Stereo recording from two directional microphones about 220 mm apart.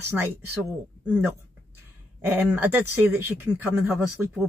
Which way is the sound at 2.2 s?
10° right (ahead or behind).